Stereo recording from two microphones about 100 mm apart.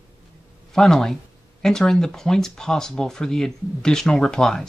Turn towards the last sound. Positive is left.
turn(degrees=5)  # may be behind; listen again after turning